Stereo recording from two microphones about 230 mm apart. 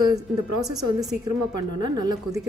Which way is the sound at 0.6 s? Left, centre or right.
Centre.